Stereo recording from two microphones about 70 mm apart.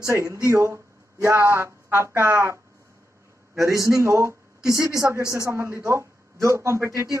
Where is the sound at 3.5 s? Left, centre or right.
Right.